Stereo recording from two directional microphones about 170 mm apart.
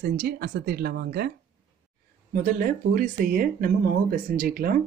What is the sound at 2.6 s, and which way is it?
Speech, 50° right (ahead or behind).